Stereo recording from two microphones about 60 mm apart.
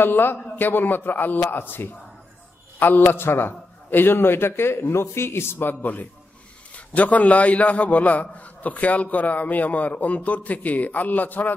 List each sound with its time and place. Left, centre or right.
0.0 s a man's voice: left